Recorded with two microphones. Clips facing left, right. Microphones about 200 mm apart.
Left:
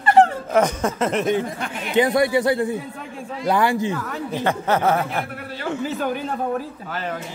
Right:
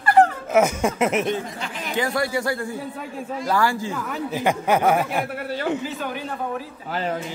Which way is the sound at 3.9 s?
5° right (ahead or behind).